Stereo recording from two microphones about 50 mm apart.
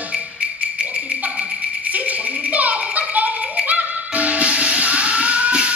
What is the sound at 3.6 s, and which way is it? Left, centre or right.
Music, right.